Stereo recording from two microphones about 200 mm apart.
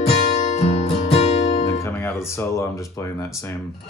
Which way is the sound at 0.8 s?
30° left (ahead or behind).